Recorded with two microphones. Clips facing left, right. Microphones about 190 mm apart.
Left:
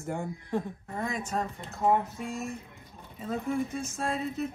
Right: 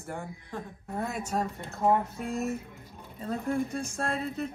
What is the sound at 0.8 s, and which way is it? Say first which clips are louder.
Speech: even; 5° right (ahead or behind).